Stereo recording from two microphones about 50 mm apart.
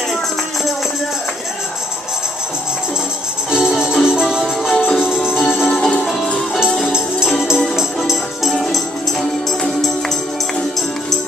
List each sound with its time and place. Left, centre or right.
3.5 s music: centre
4.6 s music: centre
5.6 s music: centre
8.0 s music: centre